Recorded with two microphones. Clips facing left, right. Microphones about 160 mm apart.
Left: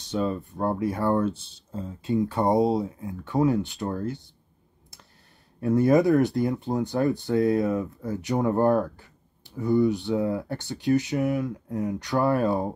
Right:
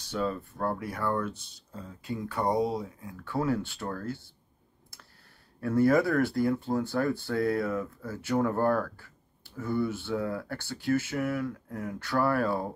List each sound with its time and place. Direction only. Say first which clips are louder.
0.0 s speech: left 4 dB; 20° left (ahead or behind)
4.9 s a sound: left 1 dB; 20° left (ahead or behind)
5.6 s speech: left 4 dB; 20° left (ahead or behind)